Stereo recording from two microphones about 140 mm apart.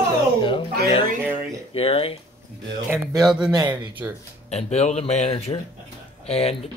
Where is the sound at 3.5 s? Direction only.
30° right (ahead or behind).